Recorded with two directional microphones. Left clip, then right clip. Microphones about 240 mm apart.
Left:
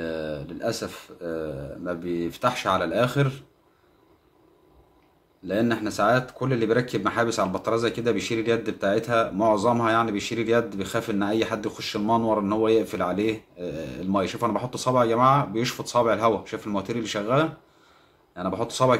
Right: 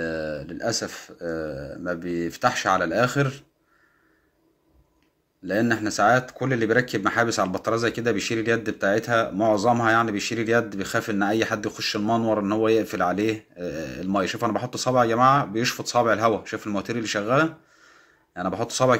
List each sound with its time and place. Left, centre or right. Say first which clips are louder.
0.0 s speech: right 2 dB; centre
5.4 s speech: right 2 dB; centre